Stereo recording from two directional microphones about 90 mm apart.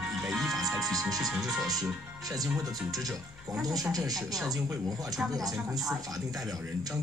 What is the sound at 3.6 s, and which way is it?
Speech, 45° right (ahead or behind).